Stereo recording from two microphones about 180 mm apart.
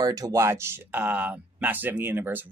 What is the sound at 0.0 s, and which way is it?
Speech, 20° right (ahead or behind).